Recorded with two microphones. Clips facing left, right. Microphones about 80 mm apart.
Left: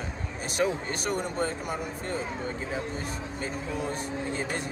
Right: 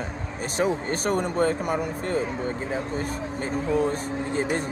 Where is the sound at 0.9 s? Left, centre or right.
Right.